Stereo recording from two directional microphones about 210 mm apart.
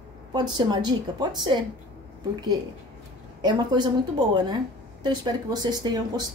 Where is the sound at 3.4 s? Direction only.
20° right (ahead or behind).